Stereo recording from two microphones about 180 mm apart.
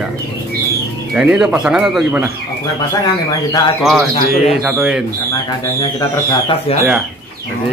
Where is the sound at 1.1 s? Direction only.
5° right (ahead or behind).